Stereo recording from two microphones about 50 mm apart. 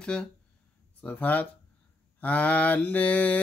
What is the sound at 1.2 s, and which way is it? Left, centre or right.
Speech, left.